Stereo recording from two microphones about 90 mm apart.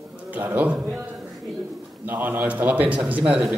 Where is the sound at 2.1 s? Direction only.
20° right (ahead or behind).